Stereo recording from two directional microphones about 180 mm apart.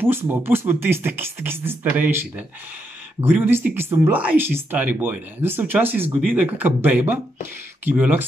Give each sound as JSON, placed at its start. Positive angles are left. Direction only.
{"t": 0.0, "sound": "speech", "side_deg": -10}